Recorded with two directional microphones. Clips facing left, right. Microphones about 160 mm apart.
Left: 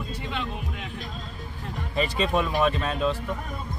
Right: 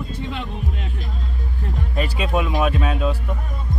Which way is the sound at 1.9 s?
5° right (ahead or behind).